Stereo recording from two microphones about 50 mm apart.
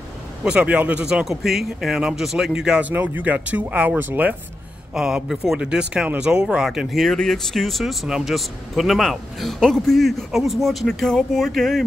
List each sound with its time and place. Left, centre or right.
0.4 s a man's voice: right
1.2 s a man's voice: centre
2.9 s speech: right
4.9 s speech: centre
6.9 s a man's voice: centre